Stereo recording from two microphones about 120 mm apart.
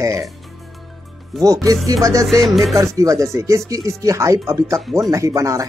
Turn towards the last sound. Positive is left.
turn(degrees=-25)  # may be behind; listen again after turning